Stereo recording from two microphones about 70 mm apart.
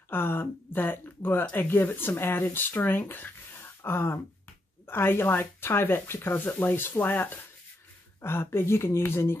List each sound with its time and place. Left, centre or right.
0.1 s speech: left